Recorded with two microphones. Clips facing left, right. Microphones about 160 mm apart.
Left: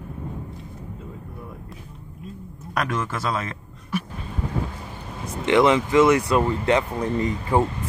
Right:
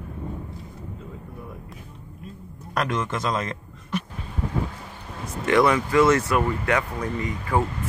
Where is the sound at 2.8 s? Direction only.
5° left (ahead or behind).